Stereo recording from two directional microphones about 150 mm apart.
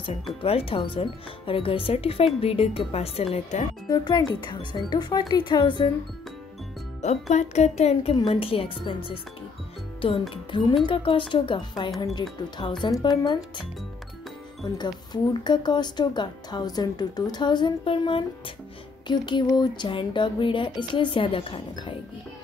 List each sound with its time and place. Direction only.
0.1 s speech: 40° left (ahead or behind)
3.9 s speech: 25° left (ahead or behind)
7.0 s speech: 50° left (ahead or behind)
10.3 s speech: 30° left (ahead or behind)